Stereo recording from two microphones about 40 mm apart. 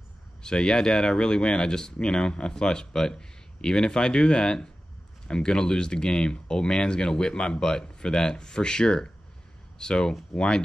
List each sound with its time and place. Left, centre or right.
0.4 s speech: left